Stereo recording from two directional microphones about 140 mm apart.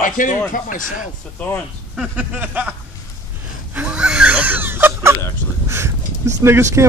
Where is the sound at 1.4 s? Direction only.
10° left (ahead or behind).